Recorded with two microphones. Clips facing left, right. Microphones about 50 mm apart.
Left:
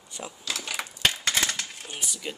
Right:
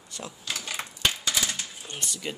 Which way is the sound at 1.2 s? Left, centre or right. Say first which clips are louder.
Left 2 dB; left.